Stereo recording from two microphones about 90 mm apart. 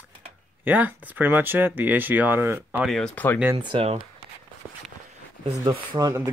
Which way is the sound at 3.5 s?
90° right.